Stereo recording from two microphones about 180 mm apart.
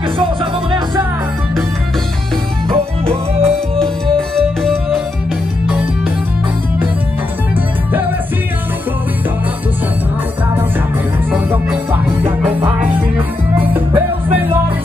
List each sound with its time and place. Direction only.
0.2 s music: 30° right (ahead or behind)
2.7 s music: 30° right (ahead or behind)
4.4 s music: 5° left (ahead or behind)
11.3 s music: 10° right (ahead or behind)
12.5 s music: 30° right (ahead or behind)
13.6 s music: 10° right (ahead or behind)